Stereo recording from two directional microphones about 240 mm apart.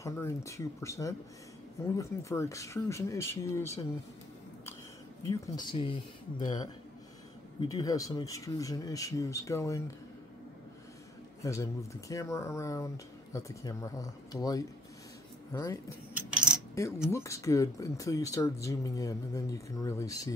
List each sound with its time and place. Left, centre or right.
0.0 s speech: centre
5.2 s speech: centre
11.4 s speech: centre
16.2 s coin: centre
17.1 s speech: centre